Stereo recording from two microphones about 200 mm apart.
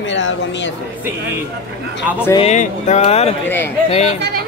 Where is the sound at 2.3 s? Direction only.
35° left (ahead or behind).